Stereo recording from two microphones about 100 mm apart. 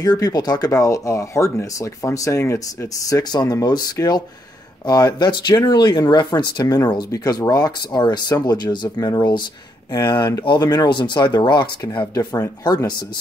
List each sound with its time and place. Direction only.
0.0 s speech: 40° left (ahead or behind)
10.4 s speech: 45° left (ahead or behind)
12.1 s speech: 40° left (ahead or behind)